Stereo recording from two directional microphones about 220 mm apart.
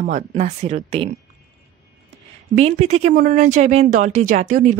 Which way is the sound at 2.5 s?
30° right (ahead or behind).